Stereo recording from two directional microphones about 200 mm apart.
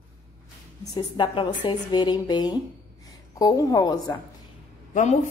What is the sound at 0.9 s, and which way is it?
A woman's voice, 25° left (ahead or behind).